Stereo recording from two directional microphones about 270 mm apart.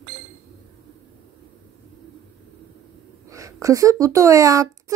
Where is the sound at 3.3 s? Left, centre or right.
Centre.